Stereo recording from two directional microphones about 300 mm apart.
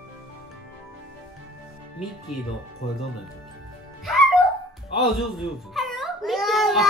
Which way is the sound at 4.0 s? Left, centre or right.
Centre.